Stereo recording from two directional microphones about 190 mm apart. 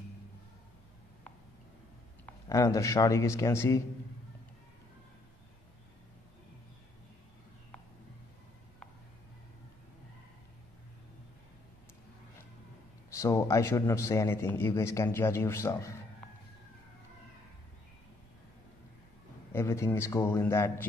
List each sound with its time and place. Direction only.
2.5 s a man's voice: 15° left (ahead or behind)
13.1 s a man's voice: 15° left (ahead or behind)
19.5 s a man's voice: 15° left (ahead or behind)